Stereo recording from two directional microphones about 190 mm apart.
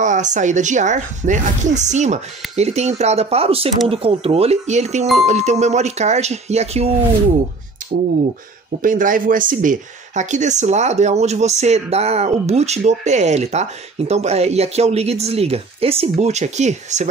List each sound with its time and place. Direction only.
0.0 s speech: 40° right (ahead or behind)
8.8 s speech: 45° right (ahead or behind)